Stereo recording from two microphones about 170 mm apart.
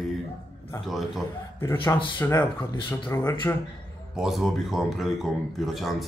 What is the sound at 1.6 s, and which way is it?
Speech, 15° left (ahead or behind).